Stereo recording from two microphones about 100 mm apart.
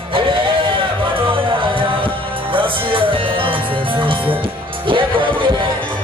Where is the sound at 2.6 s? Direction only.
60° right (ahead or behind).